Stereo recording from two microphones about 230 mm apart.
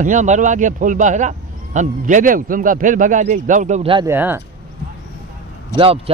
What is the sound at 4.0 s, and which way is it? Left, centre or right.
Speech, centre.